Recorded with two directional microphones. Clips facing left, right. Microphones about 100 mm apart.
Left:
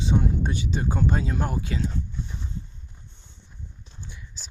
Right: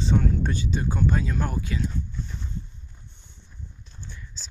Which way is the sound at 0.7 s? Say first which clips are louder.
Left 1 dB; 30° left (ahead or behind).